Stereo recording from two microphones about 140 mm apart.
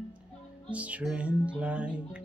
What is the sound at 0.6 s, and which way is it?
Music, 10° right (ahead or behind).